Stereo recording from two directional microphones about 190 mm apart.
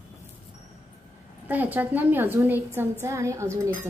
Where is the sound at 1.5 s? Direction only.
10° right (ahead or behind).